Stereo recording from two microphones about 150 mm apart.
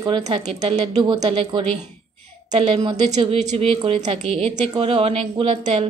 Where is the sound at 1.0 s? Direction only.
40° right (ahead or behind).